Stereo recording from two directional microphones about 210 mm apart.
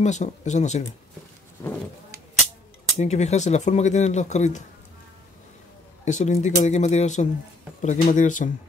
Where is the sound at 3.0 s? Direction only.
30° left (ahead or behind).